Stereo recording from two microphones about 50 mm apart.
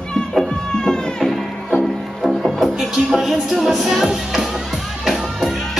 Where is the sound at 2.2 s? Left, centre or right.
Centre.